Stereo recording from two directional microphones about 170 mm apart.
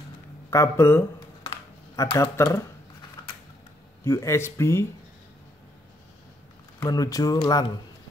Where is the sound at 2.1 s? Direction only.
25° left (ahead or behind).